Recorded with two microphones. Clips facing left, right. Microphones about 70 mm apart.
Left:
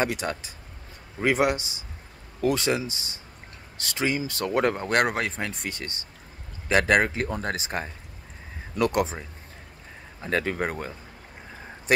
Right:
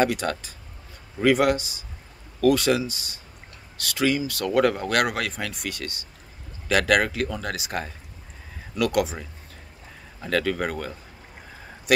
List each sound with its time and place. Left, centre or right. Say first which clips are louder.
0.0 s speech: right 4 dB; left